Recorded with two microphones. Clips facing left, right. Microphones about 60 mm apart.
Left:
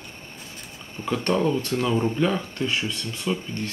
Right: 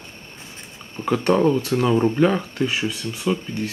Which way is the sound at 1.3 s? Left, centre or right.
Right.